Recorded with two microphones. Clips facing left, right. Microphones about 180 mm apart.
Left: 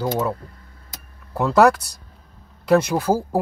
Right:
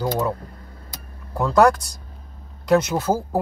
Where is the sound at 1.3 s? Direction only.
5° left (ahead or behind).